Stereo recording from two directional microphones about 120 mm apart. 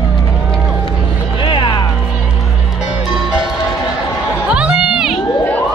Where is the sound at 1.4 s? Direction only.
40° left (ahead or behind).